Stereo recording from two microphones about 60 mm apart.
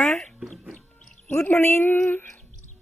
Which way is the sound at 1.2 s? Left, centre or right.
Left.